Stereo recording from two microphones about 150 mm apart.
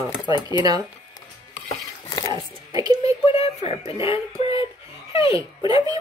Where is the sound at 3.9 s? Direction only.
35° left (ahead or behind).